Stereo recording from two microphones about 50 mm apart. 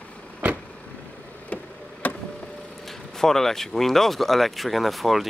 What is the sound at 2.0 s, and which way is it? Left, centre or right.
Vehicle, left.